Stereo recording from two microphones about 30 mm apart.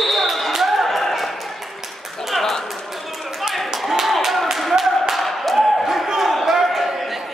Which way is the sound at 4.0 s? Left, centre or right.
Centre.